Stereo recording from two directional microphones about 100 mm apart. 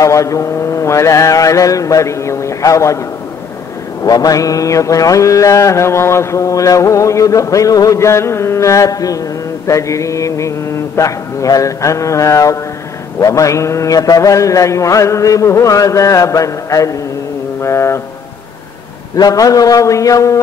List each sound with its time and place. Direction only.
0.0 s mantra: 35° left (ahead or behind)
4.0 s mantra: 40° left (ahead or behind)
17.6 s a sound: 30° left (ahead or behind)
19.1 s mantra: 40° left (ahead or behind)